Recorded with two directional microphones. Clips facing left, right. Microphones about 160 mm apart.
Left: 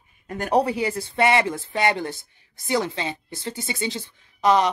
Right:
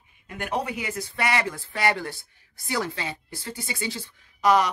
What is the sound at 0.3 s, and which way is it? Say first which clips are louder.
Speech: left 8 dB; 40° left (ahead or behind).